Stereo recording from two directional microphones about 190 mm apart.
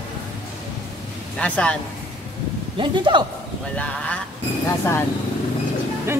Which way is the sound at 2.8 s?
25° right (ahead or behind).